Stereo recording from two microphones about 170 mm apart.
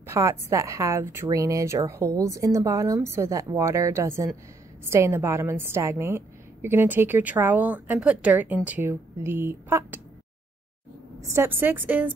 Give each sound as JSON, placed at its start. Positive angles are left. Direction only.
{"t": 0.0, "sound": "a woman's voice", "side_deg": -15}
{"t": 11.1, "sound": "a woman's voice", "side_deg": -15}